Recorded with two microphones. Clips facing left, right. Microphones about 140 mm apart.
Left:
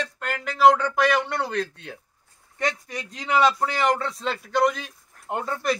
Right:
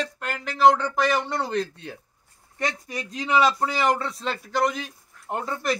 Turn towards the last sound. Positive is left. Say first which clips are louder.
# left 1 dB
turn(degrees=0)  # may be behind; listen again after turning